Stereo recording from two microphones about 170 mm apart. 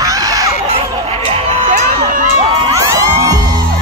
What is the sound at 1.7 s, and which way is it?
Crowd, 55° right (ahead or behind).